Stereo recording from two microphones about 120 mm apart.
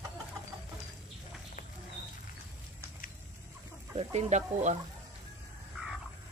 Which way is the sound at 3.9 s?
70° right (ahead or behind).